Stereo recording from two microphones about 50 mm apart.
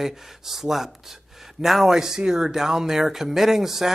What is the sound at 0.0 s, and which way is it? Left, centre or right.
Speech, centre.